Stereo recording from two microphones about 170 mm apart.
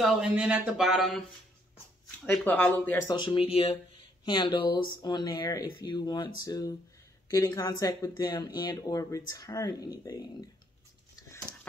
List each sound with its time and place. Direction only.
0.0 s speech: 5° right (ahead or behind)
2.2 s speech: 10° left (ahead or behind)
3.1 s speech: 30° left (ahead or behind)